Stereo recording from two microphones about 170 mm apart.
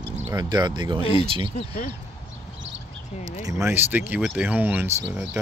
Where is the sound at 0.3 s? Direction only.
25° right (ahead or behind).